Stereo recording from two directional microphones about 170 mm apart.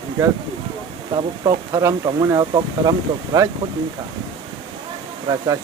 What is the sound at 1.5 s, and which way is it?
Speech, 25° right (ahead or behind).